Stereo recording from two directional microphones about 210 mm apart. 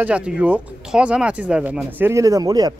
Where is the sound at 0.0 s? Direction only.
5° right (ahead or behind).